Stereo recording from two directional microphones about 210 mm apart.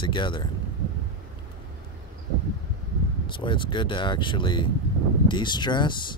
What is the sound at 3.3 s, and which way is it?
Speech, 25° left (ahead or behind).